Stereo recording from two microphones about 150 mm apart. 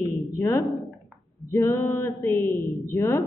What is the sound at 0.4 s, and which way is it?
Speech, 20° left (ahead or behind).